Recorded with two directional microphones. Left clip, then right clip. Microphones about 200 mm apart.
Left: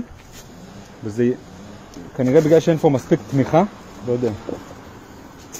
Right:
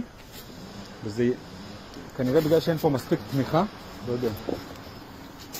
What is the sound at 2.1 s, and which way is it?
Speech, 40° left (ahead or behind).